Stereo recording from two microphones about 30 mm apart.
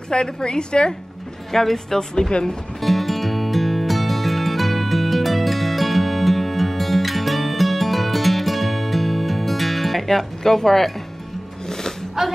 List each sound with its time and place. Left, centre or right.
0.1 s a woman's voice: left
1.5 s speech: centre
2.8 s music: centre
12.2 s speech: centre